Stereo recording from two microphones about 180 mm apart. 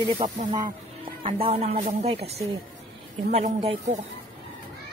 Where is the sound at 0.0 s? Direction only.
25° right (ahead or behind).